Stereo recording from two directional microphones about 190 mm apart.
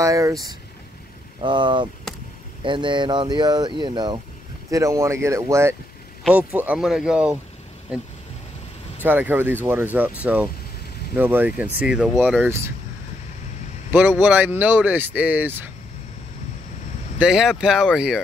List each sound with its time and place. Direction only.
0.0 s speech: 15° right (ahead or behind)
9.0 s speech: 10° right (ahead or behind)
14.2 s speech: 10° right (ahead or behind)
17.2 s speech: 5° right (ahead or behind)